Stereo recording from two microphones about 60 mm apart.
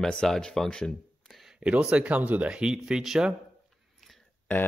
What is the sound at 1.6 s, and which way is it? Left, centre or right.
Speech, centre.